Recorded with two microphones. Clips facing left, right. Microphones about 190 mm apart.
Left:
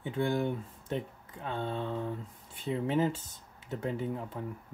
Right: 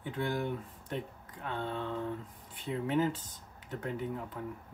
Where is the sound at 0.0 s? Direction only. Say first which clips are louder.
Left 4 dB; 25° left (ahead or behind).